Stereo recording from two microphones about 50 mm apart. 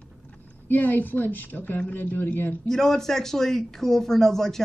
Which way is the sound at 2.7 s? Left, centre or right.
Centre.